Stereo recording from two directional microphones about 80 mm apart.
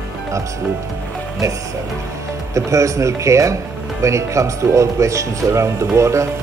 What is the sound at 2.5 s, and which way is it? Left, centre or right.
Speech, right.